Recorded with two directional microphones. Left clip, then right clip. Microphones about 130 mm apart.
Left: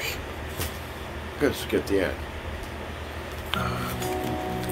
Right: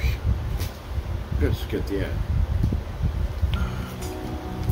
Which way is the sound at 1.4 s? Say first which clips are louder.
Left 4 dB; 30° right (ahead or behind).